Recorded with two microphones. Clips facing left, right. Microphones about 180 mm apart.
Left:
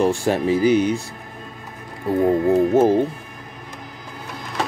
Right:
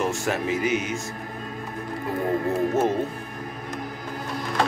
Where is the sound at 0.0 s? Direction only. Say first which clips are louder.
Left 6 dB; 30° left (ahead or behind).